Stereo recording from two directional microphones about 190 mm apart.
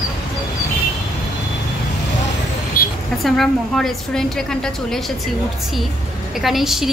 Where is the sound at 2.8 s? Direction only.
50° left (ahead or behind).